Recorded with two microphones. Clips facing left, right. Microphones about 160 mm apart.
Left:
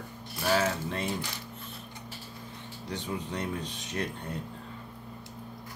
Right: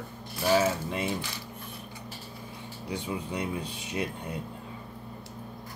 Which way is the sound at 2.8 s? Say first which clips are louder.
Right 2 dB; 10° right (ahead or behind).